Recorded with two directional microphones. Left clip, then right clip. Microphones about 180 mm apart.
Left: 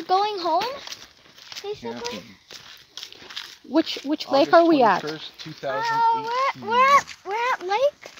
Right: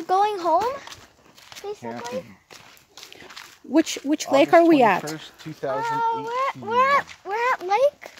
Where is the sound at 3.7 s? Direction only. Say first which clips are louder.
Right 2 dB; 5° right (ahead or behind).